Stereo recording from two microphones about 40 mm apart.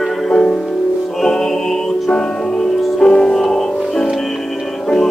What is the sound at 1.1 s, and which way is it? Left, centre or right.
Music, centre.